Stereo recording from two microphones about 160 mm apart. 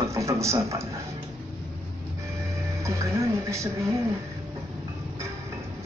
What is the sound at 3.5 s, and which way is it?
Speech, 20° right (ahead or behind).